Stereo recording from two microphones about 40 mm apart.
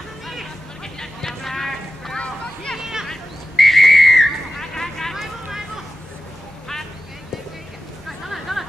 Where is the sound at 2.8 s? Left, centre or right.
Centre.